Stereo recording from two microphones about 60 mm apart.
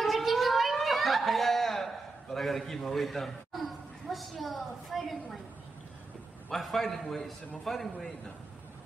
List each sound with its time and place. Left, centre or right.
0.0 s a sound: centre
4.1 s a man's voice: centre
6.5 s a man's voice: centre